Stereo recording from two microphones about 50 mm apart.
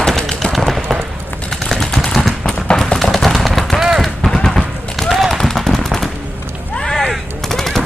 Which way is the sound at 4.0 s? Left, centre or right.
Centre.